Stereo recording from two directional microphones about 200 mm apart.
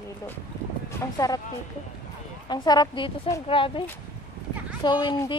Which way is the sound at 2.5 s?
20° left (ahead or behind).